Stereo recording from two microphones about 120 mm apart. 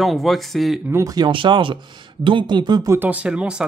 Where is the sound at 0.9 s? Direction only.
30° right (ahead or behind).